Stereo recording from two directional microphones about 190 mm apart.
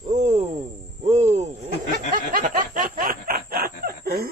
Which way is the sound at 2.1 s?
45° right (ahead or behind).